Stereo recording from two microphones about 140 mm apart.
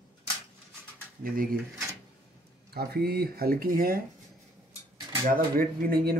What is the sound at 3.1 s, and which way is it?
Speech, 90° right.